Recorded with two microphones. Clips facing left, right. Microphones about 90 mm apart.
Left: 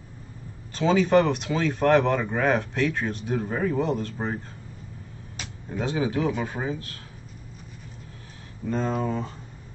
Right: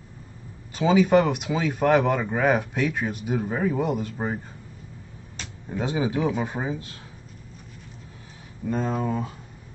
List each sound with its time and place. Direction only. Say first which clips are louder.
0.7 s speech: right 1 dB; 10° right (ahead or behind)
5.7 s speech: right 1 dB; 10° right (ahead or behind)
8.6 s speech: even; 5° right (ahead or behind)